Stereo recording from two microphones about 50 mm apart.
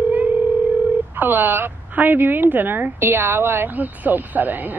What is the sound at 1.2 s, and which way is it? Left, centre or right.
A woman's voice, right.